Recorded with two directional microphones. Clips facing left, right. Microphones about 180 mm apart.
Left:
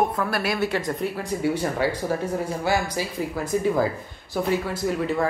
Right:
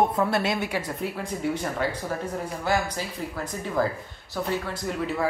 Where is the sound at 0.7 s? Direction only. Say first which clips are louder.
Left 4 dB; 5° right (ahead or behind).